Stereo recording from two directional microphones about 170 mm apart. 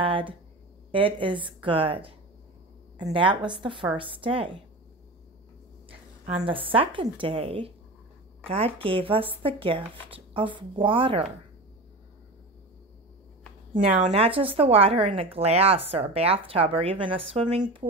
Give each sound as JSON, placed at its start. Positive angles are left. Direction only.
{"t": 0.0, "sound": "a sound", "side_deg": -30}
{"t": 0.9, "sound": "a woman's voice", "side_deg": -30}
{"t": 5.9, "sound": "a woman's voice", "side_deg": -30}
{"t": 14.1, "sound": "speech", "side_deg": -35}